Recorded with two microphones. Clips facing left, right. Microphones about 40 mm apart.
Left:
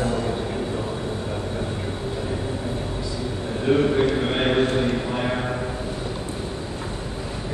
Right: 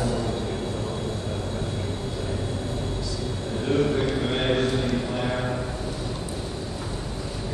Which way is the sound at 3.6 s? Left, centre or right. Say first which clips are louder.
Left 4 dB; left.